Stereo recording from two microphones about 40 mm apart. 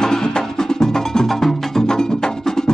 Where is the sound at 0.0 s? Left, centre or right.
Centre.